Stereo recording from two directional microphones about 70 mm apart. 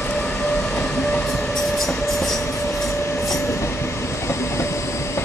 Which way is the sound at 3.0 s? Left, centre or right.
Left.